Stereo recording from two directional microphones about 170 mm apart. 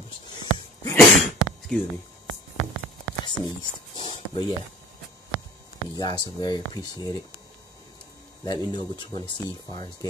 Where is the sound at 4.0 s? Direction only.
30° left (ahead or behind).